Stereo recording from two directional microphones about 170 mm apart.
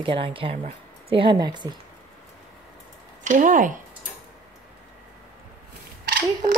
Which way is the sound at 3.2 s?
50° right (ahead or behind).